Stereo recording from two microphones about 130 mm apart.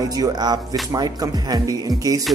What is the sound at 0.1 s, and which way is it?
Speech, 30° right (ahead or behind).